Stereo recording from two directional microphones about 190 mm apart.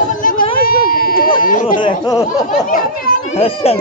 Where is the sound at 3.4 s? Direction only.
30° left (ahead or behind).